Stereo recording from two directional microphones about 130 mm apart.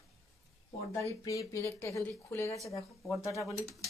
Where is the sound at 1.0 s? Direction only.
25° left (ahead or behind).